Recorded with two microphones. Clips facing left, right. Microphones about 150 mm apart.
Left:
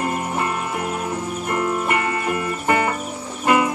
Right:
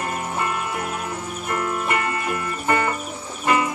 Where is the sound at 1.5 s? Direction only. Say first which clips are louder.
Left 2 dB; 45° left (ahead or behind).